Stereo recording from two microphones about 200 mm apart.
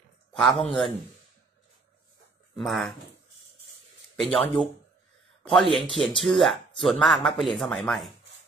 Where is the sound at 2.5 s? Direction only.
Centre (ahead or behind).